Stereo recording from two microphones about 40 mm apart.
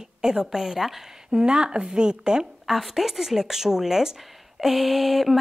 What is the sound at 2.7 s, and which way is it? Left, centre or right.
Speech, centre.